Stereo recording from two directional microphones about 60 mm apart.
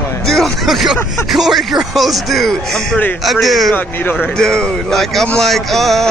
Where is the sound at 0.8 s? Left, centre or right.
Centre.